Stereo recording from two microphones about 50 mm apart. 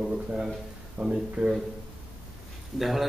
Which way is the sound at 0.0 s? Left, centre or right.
Centre.